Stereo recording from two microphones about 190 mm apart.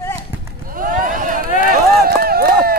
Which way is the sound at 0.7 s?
45° right (ahead or behind).